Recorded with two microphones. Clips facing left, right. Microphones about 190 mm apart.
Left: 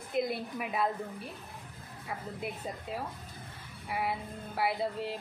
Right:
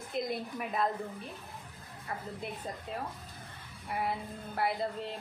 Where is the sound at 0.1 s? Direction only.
5° left (ahead or behind).